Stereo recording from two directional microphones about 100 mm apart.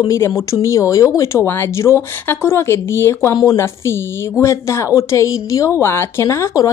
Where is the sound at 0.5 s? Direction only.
30° left (ahead or behind).